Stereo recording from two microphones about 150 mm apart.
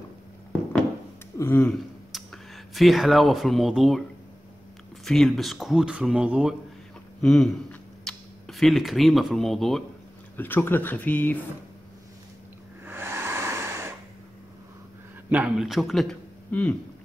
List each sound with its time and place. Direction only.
1.4 s speech: 15° left (ahead or behind)
2.1 s speech: centre (ahead or behind)
5.0 s speech: centre (ahead or behind)
10.3 s speech: 15° left (ahead or behind)
12.8 s a sound: 15° right (ahead or behind)
15.2 s a man's voice: 10° right (ahead or behind)